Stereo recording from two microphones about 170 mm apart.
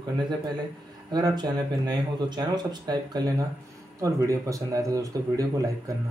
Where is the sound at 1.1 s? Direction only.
25° right (ahead or behind).